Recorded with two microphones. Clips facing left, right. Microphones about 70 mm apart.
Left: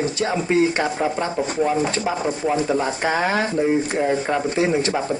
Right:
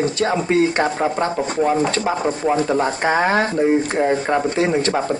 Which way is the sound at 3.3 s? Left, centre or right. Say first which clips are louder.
Right 3 dB; right.